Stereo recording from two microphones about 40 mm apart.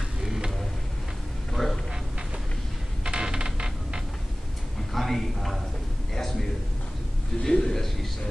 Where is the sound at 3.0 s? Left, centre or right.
Right.